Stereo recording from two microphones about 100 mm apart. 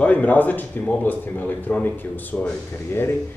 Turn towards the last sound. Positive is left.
turn(degrees=20)  # may be behind; listen again after turning